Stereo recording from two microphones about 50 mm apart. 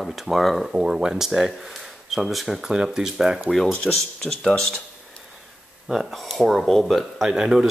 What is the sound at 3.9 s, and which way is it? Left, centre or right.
Speech, centre.